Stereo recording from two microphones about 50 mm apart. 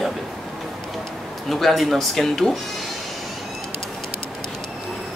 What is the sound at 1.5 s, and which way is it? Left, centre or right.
Speech, centre.